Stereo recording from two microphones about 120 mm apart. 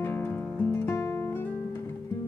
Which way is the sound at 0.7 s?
20° left (ahead or behind).